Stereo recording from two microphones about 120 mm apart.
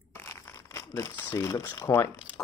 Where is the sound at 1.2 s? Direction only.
20° left (ahead or behind).